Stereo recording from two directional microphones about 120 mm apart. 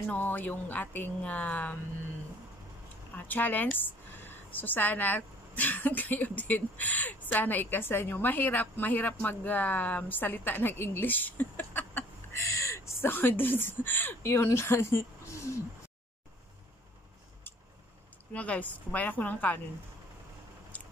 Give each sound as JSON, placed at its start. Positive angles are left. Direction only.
{"t": 0.1, "sound": "speech", "side_deg": 15}
{"t": 3.2, "sound": "speech", "side_deg": 15}
{"t": 18.3, "sound": "speech", "side_deg": 10}